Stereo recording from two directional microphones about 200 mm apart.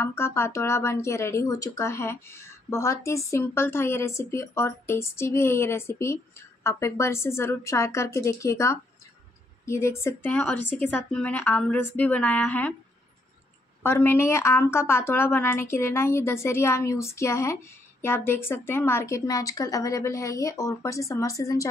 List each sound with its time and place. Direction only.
0.0 s a woman's voice: 15° left (ahead or behind)
13.8 s a woman's voice: 10° left (ahead or behind)